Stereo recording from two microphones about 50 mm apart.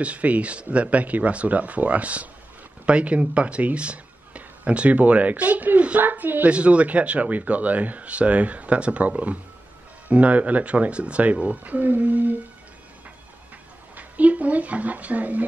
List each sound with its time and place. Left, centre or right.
0.0 s speech: right
13.9 s speech: right